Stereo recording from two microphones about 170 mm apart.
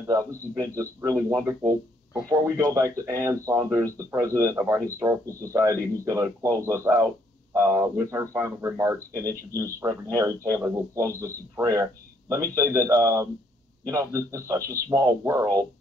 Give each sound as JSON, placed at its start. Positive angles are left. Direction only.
{"t": 0.0, "sound": "speech", "side_deg": -20}